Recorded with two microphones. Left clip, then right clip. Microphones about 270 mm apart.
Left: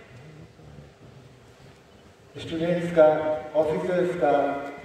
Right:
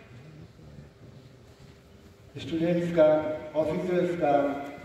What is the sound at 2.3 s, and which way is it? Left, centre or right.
A man's voice, left.